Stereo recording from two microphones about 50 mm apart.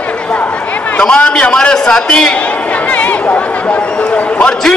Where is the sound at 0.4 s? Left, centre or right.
Left.